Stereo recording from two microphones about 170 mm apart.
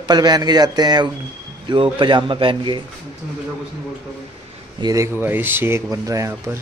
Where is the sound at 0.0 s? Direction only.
25° right (ahead or behind).